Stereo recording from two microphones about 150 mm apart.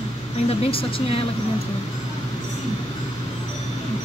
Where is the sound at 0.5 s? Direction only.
40° left (ahead or behind).